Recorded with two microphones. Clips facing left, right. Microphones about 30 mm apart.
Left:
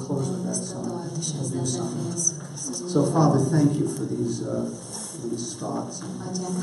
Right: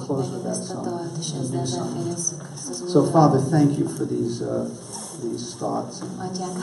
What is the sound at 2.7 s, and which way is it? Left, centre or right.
A woman's voice, right.